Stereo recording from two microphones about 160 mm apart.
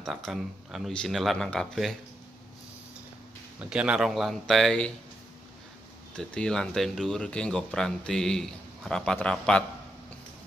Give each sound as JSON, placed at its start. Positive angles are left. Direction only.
{"t": 0.0, "sound": "speech", "side_deg": 0}
{"t": 3.7, "sound": "speech", "side_deg": -5}
{"t": 6.1, "sound": "speech", "side_deg": 5}